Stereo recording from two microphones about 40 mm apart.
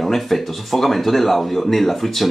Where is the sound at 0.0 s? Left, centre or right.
Centre.